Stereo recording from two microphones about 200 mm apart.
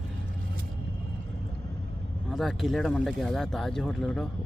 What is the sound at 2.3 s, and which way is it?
Speech, centre (ahead or behind).